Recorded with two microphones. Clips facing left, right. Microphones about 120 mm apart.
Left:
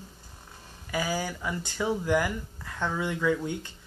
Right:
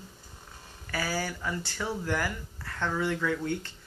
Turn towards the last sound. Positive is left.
turn(degrees=15)  # may be behind; listen again after turning